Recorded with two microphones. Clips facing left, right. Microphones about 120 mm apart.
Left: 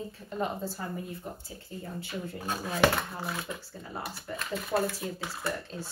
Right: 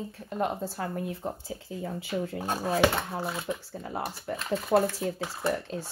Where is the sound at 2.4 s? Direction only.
35° right (ahead or behind).